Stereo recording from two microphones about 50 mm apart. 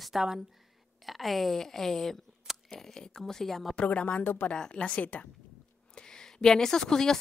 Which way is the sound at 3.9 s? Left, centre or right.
Left.